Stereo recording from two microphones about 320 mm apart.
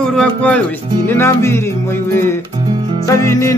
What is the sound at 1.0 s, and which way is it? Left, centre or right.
Music, centre.